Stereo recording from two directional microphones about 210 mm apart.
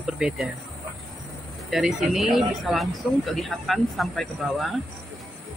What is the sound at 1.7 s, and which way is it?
Speech, centre (ahead or behind).